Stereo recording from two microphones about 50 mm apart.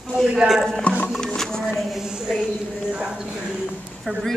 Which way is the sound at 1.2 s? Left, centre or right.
Centre.